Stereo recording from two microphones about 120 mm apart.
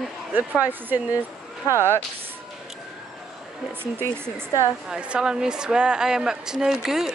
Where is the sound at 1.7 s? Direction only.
20° left (ahead or behind).